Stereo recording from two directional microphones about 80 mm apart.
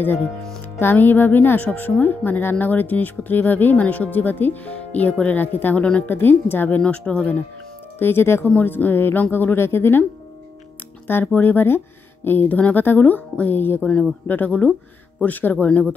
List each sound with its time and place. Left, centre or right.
0.7 s speech: left
6.8 s speech: centre
8.0 s speech: left
11.1 s speech: left